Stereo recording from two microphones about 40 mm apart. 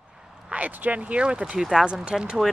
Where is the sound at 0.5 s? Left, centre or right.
Right.